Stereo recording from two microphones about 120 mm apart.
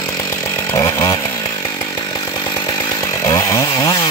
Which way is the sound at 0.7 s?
25° left (ahead or behind).